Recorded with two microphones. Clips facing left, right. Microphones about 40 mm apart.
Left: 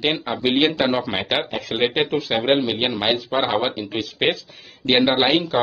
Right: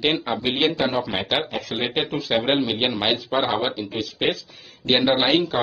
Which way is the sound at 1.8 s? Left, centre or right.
Centre.